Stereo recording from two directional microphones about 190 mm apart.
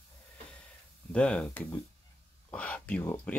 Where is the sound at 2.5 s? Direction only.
5° left (ahead or behind).